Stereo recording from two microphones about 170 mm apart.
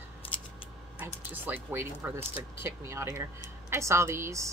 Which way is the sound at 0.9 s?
10° right (ahead or behind).